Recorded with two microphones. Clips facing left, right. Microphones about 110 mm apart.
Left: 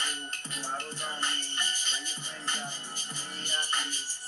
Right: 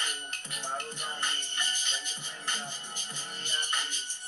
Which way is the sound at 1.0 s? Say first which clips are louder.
Left 1 dB; 20° right (ahead or behind).